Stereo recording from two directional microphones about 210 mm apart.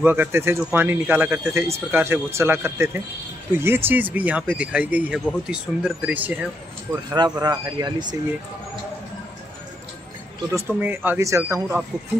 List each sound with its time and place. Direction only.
0.0 s speech: 10° right (ahead or behind)
7.1 s speech: 20° right (ahead or behind)
10.5 s speech: 10° right (ahead or behind)